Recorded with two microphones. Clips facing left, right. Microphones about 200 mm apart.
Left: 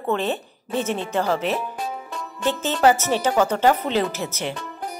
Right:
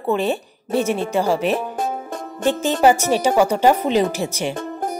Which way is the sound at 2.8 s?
15° right (ahead or behind).